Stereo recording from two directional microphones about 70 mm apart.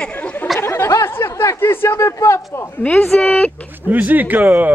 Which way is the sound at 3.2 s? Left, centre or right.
Left.